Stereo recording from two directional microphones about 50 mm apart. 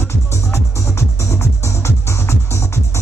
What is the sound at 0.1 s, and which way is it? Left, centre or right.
Music, left.